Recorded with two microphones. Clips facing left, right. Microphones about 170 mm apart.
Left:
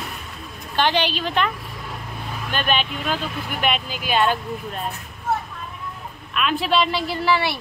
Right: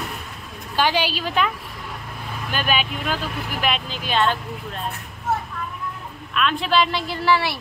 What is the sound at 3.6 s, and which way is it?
Speech, 5° left (ahead or behind).